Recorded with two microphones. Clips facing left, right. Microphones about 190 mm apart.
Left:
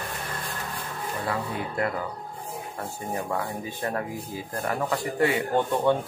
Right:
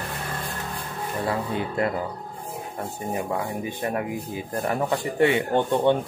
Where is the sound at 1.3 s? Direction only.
25° right (ahead or behind).